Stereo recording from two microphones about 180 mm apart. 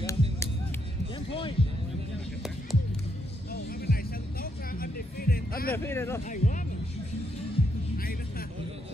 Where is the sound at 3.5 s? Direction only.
60° left (ahead or behind).